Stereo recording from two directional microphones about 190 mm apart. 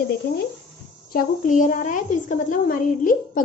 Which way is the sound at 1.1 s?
45° left (ahead or behind).